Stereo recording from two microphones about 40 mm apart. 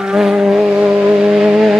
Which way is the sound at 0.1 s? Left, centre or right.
Centre.